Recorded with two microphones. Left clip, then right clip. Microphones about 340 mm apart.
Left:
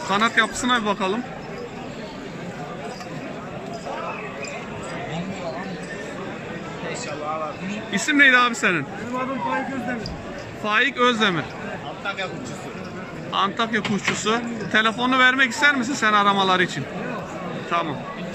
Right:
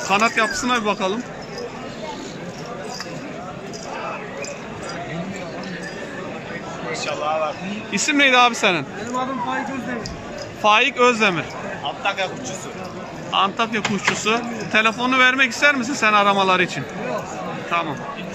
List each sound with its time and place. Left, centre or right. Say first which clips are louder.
0.1 s speech: right 2 dB; centre
7.9 s a man's voice: even; centre
10.6 s speech: right 4 dB; centre
12.0 s speech: right 6 dB; right
13.3 s speech: right 2 dB; centre